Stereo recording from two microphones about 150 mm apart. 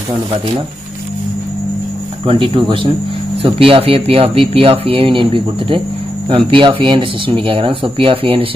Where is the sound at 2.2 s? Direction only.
35° right (ahead or behind).